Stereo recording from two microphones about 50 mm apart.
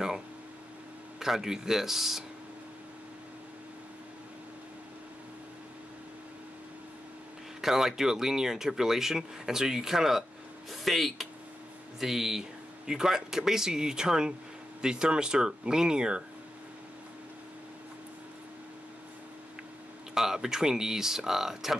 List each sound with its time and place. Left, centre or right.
1.2 s speech: centre
7.6 s speech: centre
20.2 s speech: centre